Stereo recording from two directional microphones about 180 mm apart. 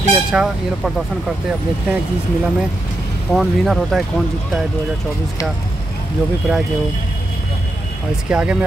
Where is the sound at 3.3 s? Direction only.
Centre (ahead or behind).